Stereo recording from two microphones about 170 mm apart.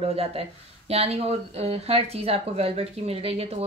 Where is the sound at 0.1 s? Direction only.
35° right (ahead or behind).